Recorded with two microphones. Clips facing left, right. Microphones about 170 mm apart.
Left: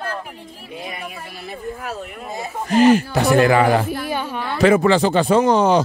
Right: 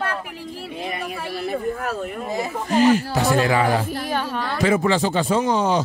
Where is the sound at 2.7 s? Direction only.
70° left (ahead or behind).